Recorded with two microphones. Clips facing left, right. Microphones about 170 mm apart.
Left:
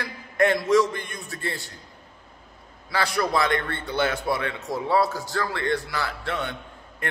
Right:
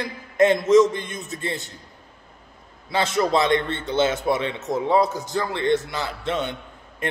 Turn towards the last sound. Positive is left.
turn(degrees=-20)  # may be behind; listen again after turning